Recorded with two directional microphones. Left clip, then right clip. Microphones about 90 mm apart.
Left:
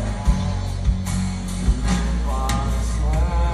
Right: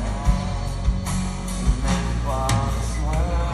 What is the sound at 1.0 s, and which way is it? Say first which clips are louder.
Music: even; 40° right (ahead or behind).